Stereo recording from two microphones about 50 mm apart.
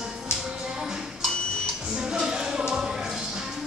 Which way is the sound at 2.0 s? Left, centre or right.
Centre.